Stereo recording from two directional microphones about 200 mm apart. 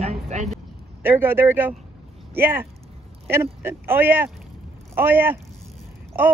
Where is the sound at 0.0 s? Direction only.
35° right (ahead or behind).